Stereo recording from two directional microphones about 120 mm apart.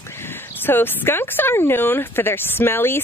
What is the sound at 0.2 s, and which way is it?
Speech, 20° left (ahead or behind).